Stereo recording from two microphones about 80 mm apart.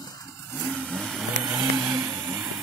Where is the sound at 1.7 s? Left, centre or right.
Right.